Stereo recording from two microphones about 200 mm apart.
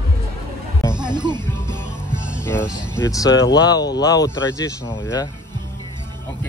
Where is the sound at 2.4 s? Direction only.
10° left (ahead or behind).